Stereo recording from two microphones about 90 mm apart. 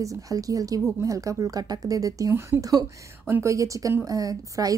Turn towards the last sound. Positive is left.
turn(degrees=-40)  # may be behind; listen again after turning